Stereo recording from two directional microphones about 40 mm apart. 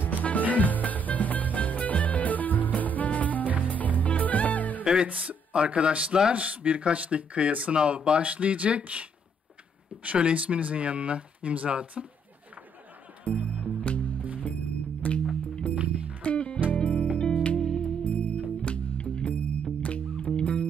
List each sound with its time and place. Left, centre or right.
0.2 s music: left
5.0 s speech: right
6.3 s speech: right
10.0 s speech: right
13.3 s music: left
15.7 s music: right
16.2 s music: left
17.6 s music: centre
18.0 s music: left
20.3 s music: left